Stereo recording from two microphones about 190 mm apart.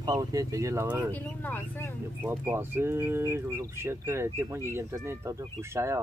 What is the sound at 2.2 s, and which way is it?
Speech, 10° right (ahead or behind).